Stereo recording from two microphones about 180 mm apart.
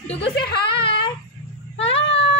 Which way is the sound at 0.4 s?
65° left (ahead or behind).